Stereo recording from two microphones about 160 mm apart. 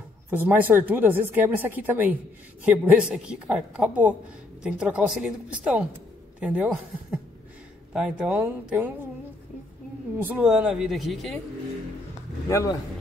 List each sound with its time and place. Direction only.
0.3 s a woman's voice: 10° right (ahead or behind)
10.2 s a woman's voice: 5° right (ahead or behind)
12.4 s speech: 20° left (ahead or behind)